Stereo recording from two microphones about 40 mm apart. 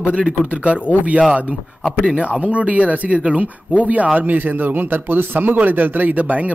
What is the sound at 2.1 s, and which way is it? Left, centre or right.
Speech, right.